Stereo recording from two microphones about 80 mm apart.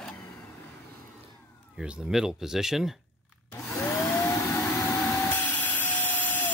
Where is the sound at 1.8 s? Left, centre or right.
Centre.